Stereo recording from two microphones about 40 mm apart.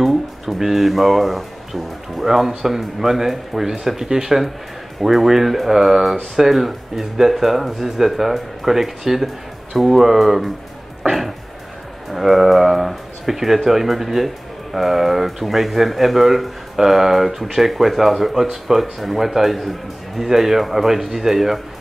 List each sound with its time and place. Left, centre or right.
0.0 s speech: centre
11.0 s music: centre
12.1 s speech: centre